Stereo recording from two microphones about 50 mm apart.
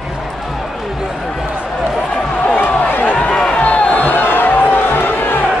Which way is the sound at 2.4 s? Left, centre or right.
Left.